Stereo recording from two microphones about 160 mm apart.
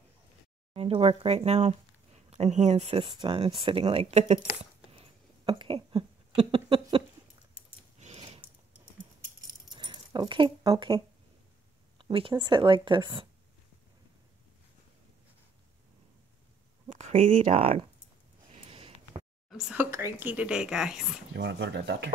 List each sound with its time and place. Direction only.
0.7 s speech: 40° right (ahead or behind)
4.6 s a sound: 35° right (ahead or behind)
8.0 s a sound: 45° right (ahead or behind)
9.5 s keys jangling: 25° right (ahead or behind)
12.0 s speech: 35° right (ahead or behind)
16.9 s speech: 50° right (ahead or behind)
17.6 s speech: 35° right (ahead or behind)
18.5 s sniff: 35° right (ahead or behind)
19.5 s speech: 10° right (ahead or behind)
21.4 s speech: 90° right